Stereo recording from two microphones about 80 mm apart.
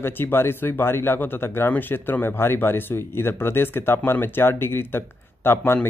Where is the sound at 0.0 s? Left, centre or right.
Left.